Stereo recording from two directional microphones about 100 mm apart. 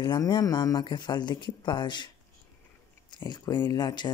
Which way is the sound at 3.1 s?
45° left (ahead or behind).